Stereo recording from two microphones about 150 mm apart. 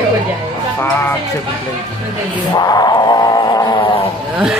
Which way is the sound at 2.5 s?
25° left (ahead or behind).